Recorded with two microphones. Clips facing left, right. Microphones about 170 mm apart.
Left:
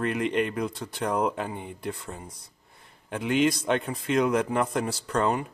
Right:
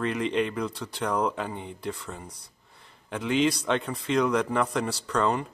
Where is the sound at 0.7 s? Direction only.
50° left (ahead or behind).